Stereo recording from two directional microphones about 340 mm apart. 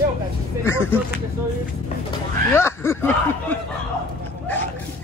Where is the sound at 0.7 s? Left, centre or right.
Centre.